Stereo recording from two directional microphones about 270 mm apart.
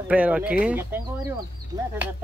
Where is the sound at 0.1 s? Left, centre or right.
Centre.